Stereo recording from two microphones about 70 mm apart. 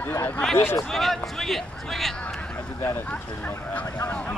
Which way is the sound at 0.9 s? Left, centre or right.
Centre.